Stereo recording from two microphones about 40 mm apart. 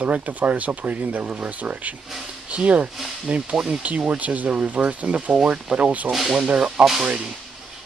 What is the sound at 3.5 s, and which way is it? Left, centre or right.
Speech, centre.